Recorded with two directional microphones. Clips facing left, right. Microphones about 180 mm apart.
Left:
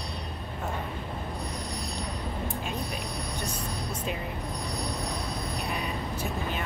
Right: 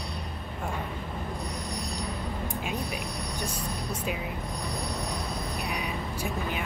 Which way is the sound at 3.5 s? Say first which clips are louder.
Right 1 dB; 10° right (ahead or behind).